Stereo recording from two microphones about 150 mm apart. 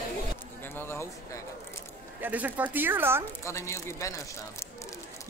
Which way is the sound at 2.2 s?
10° right (ahead or behind).